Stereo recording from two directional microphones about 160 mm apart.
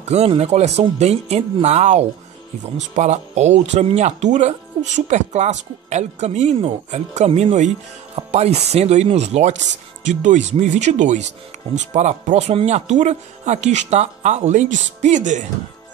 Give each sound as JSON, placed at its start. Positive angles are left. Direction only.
{"t": 0.1, "sound": "speech", "side_deg": -40}